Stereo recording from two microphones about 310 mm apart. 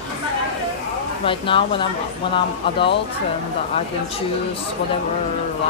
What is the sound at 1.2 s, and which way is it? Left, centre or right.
Speech, centre.